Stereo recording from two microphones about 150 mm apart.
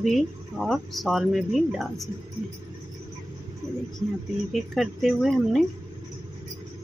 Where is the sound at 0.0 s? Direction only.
Centre (ahead or behind).